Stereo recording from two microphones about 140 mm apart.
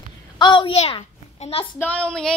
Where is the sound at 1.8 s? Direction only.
10° left (ahead or behind).